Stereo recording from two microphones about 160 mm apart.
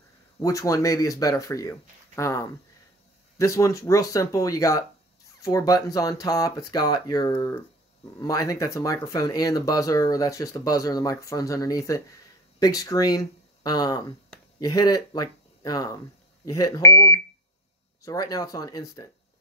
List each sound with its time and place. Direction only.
0.4 s speech: 20° left (ahead or behind)